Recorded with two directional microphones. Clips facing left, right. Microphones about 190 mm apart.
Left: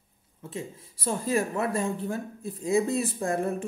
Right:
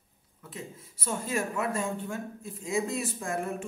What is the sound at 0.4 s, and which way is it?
Speech, 25° left (ahead or behind).